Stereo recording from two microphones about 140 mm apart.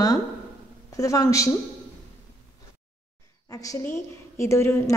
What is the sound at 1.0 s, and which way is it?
Speech, 25° left (ahead or behind).